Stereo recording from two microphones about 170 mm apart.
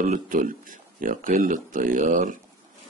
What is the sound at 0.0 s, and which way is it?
Speech, 50° right (ahead or behind).